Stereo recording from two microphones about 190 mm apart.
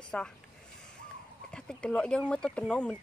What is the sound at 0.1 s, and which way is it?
Speech, 5° left (ahead or behind).